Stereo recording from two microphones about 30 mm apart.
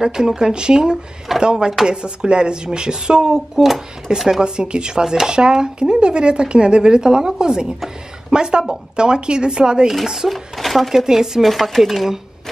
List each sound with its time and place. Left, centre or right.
0.0 s speech: right
5.0 s speech: centre
5.3 s speech: right
10.0 s speech: centre
10.3 s speech: centre
10.9 s speech: centre
11.4 s speech: centre